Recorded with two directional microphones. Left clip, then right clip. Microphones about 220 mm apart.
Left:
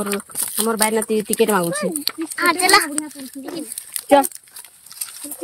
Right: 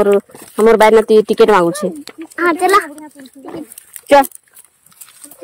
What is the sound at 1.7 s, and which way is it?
Speech, 15° left (ahead or behind).